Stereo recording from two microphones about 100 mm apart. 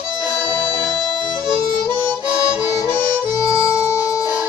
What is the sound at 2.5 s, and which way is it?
Harmonica, 10° right (ahead or behind).